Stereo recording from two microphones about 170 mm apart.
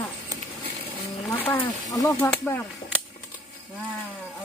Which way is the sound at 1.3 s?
15° left (ahead or behind).